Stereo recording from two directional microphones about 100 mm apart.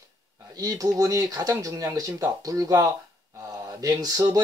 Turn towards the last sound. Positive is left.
turn(degrees=-35)  # may be behind; listen again after turning